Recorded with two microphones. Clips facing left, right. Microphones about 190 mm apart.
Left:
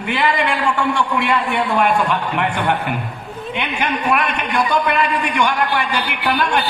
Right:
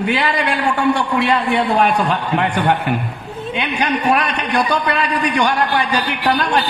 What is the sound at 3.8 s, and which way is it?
A man's voice, 40° right (ahead or behind).